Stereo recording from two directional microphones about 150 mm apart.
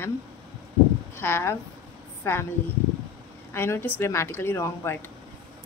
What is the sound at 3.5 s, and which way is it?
A woman's voice, 15° left (ahead or behind).